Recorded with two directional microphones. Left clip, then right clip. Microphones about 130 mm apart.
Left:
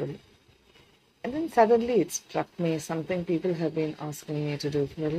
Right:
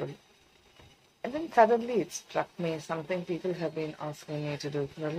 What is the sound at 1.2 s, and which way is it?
A woman's voice, 25° left (ahead or behind).